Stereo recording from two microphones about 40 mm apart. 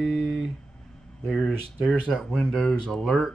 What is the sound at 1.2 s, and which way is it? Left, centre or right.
Speech, centre.